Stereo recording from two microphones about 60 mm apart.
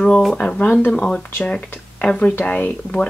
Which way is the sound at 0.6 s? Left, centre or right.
Left.